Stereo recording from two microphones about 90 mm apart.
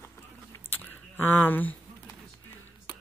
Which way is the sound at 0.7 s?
20° left (ahead or behind).